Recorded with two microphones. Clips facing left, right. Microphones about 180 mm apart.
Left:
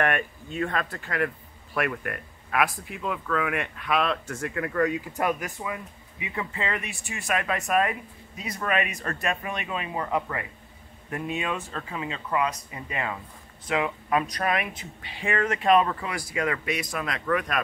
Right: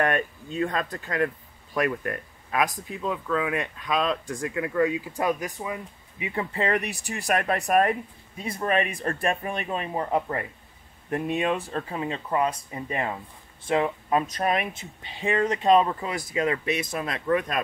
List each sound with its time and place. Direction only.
0.7 s speech: 20° right (ahead or behind)
6.2 s speech: 35° right (ahead or behind)